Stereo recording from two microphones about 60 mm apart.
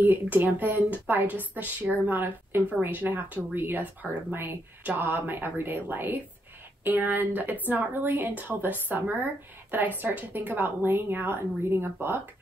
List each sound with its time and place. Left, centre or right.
0.0 s a woman's voice: right